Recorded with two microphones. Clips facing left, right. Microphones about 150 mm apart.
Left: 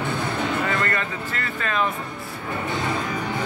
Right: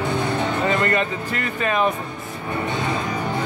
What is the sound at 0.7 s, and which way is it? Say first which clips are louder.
Music: right 4 dB; 20° right (ahead or behind).